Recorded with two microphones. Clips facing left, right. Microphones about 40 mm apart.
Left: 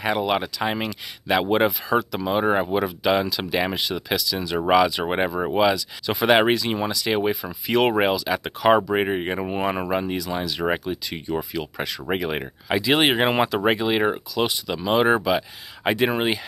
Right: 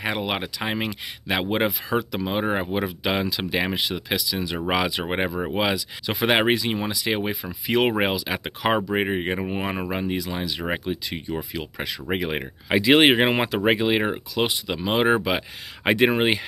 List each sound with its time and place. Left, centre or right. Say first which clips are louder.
0.0 s speech: left 4 dB; centre
8.9 s speech: left 1 dB; centre
12.7 s speech: right 3 dB; right
15.2 s speech: left 3 dB; right